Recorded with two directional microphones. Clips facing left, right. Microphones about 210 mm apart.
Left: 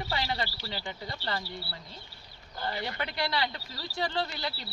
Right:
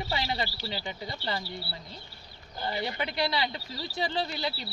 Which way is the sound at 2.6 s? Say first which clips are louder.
Right 2 dB; 15° right (ahead or behind).